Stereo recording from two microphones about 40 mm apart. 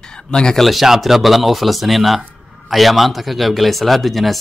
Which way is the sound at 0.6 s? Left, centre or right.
Centre.